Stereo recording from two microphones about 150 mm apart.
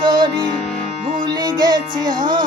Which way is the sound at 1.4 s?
25° right (ahead or behind).